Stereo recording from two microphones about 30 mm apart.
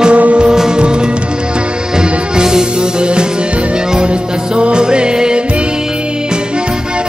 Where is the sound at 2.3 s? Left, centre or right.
Centre.